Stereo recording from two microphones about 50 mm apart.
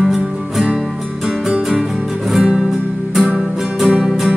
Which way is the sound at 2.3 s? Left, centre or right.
Centre.